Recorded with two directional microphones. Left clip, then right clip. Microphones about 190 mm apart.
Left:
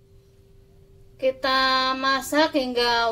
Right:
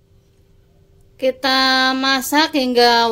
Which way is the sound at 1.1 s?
55° right (ahead or behind).